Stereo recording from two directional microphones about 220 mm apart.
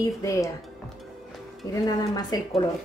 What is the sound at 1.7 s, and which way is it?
Speech, 15° left (ahead or behind).